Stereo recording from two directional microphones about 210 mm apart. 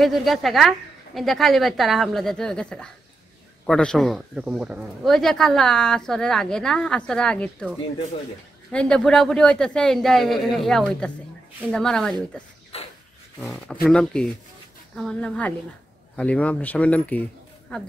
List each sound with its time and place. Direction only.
0.0 s speech: centre (ahead or behind)
8.7 s speech: 5° left (ahead or behind)
12.7 s a sound: 30° left (ahead or behind)
13.4 s speech: 5° left (ahead or behind)